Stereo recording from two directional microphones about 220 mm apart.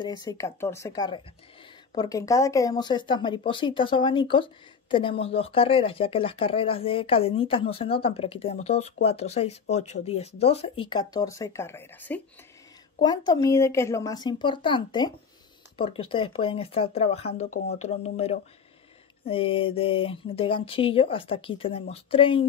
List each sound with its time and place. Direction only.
0.0 s a woman's voice: 20° left (ahead or behind)